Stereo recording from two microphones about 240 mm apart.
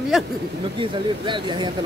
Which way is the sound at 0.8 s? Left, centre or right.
Centre.